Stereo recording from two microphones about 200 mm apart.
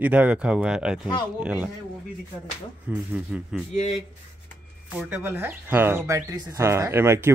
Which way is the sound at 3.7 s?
35° left (ahead or behind).